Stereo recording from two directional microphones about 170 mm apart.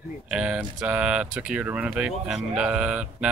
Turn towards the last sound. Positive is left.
turn(degrees=-5)  # may be behind; listen again after turning